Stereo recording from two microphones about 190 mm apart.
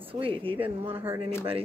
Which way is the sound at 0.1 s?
30° right (ahead or behind).